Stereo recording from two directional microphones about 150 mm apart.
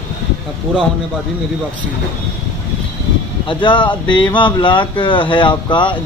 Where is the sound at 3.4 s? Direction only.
30° left (ahead or behind).